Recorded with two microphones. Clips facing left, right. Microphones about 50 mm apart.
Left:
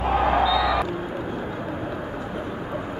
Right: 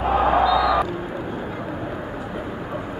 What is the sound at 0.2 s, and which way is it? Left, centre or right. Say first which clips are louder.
Crowd: right 3 dB; centre.